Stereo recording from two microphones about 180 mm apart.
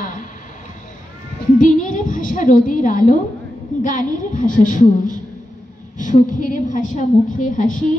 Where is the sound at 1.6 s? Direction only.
45° left (ahead or behind).